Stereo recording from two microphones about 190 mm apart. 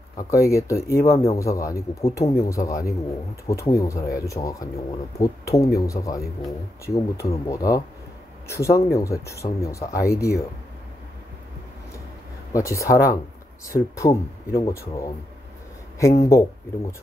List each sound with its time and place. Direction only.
0.3 s speech: 15° left (ahead or behind)
12.5 s speech: 15° left (ahead or behind)
16.3 s speech: 15° left (ahead or behind)